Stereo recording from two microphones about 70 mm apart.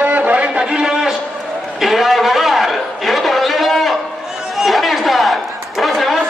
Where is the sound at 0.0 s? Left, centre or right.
Right.